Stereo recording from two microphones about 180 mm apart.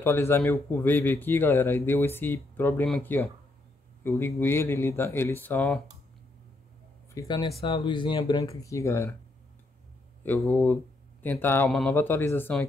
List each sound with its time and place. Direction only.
0.0 s speech: 10° left (ahead or behind)
7.2 s speech: 20° left (ahead or behind)
10.2 s speech: 10° left (ahead or behind)